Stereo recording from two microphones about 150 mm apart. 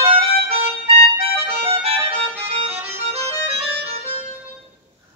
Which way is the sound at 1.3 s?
15° right (ahead or behind).